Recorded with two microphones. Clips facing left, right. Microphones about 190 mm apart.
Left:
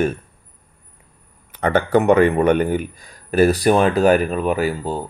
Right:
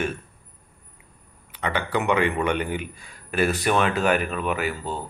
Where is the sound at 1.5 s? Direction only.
45° left (ahead or behind).